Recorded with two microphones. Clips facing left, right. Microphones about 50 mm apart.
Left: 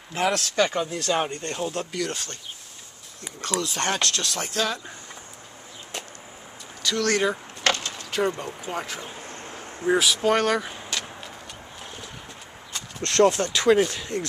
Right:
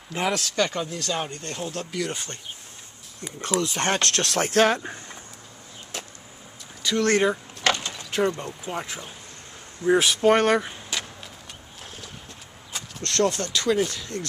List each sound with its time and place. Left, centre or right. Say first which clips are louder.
0.1 s speech: left 2 dB; centre
0.6 s speech: left 2 dB; centre
2.0 s speech: right 3 dB; centre
3.3 s speech: right 2 dB; centre
4.0 s speech: right 3 dB; right
5.9 s vehicle: even; centre
7.0 s speech: right 3 dB; right
7.2 s a sound: right 1 dB; centre
8.6 s speech: even; centre
9.9 s speech: right 3 dB; right
10.6 s vehicle: even; centre
13.0 s speech: left 4 dB; left